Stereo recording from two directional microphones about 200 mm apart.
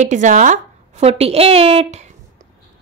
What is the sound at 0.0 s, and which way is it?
A woman's voice, 40° right (ahead or behind).